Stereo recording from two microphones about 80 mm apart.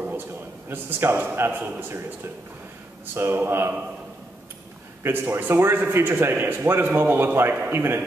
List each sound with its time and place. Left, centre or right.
0.7 s a man's voice: right
5.0 s a man's voice: right